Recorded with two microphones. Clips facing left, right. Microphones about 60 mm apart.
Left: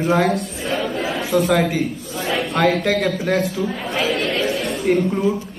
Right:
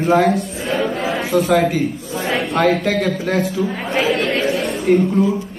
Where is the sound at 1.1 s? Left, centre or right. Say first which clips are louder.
Right 1 dB; centre.